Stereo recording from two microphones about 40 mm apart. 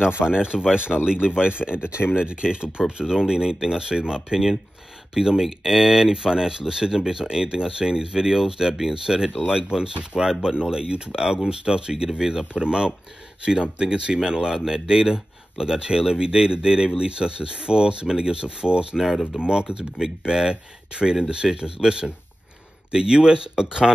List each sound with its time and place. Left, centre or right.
0.0 s speech: right
3.0 s speech: centre
18.9 s speech: centre
19.4 s speech: right